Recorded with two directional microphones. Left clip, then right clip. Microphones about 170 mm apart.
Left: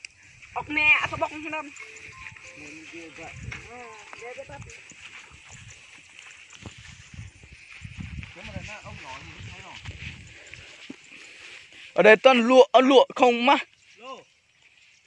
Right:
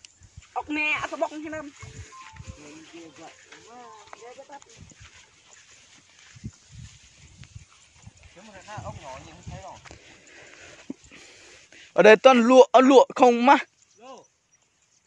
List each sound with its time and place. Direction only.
0.5 s speech: 20° right (ahead or behind)
4.1 s speech: 5° left (ahead or behind)
11.9 s speech: 30° right (ahead or behind)